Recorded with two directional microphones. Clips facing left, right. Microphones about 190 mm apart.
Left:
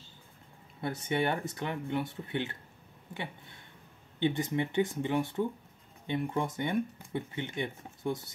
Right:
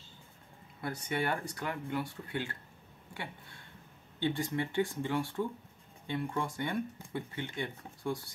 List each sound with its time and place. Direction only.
0.7 s speech: 25° left (ahead or behind)
4.2 s speech: 20° left (ahead or behind)